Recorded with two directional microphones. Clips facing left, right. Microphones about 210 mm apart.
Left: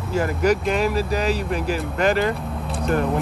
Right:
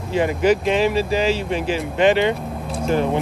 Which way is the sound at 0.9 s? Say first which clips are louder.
Right 3 dB; 30° right (ahead or behind).